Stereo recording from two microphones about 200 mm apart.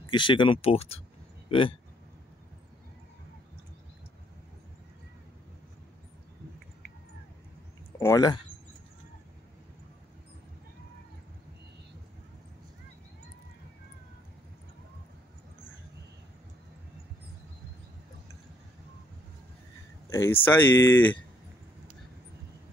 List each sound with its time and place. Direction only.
0.1 s speech: 25° left (ahead or behind)
8.0 s speech: 15° left (ahead or behind)
20.1 s speech: 10° left (ahead or behind)